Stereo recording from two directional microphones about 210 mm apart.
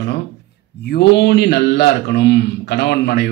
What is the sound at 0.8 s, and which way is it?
A man's voice, 50° left (ahead or behind).